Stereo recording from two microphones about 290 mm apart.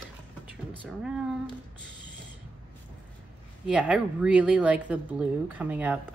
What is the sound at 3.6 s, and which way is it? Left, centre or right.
Speech, centre.